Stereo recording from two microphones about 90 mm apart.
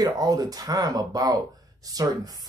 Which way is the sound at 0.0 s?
40° right (ahead or behind).